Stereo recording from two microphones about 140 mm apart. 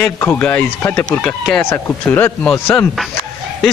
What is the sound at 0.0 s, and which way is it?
Speech, 15° left (ahead or behind).